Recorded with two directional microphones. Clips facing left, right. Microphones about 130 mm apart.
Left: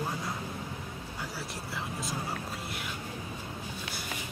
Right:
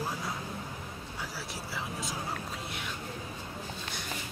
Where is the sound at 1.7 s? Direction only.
Centre (ahead or behind).